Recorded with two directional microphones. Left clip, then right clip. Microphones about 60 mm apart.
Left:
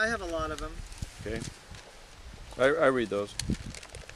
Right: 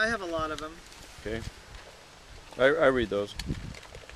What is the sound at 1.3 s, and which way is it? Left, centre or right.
Speech, centre.